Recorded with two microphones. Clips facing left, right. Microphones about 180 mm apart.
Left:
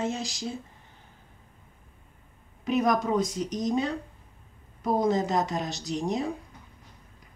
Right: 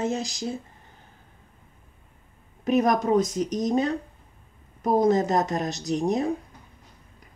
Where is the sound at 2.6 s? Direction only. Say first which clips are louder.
Right 3 dB; 45° right (ahead or behind).